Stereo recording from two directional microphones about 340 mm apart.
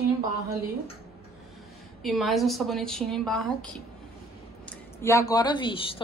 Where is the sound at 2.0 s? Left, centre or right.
Centre.